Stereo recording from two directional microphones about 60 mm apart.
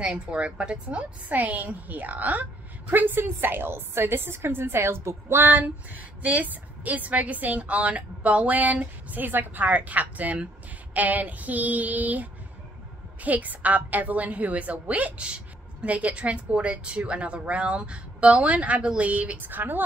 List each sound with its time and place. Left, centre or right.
0.0 s a woman's voice: centre; by 19.8 s right